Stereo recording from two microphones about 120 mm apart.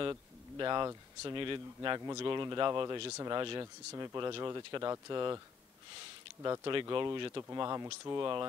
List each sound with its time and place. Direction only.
0.0 s a sound: 35° right (ahead or behind)
1.3 s speech: 40° right (ahead or behind)
2.0 s speech: 30° right (ahead or behind)
6.4 s speech: 30° right (ahead or behind)
6.7 s speech: 40° right (ahead or behind); by 8.2 s 25° right (ahead or behind)
8.2 s speech: 35° right (ahead or behind)